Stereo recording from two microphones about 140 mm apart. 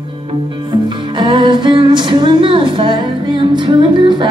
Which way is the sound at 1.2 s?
35° right (ahead or behind).